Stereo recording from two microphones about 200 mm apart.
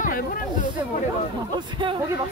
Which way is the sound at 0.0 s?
45° left (ahead or behind).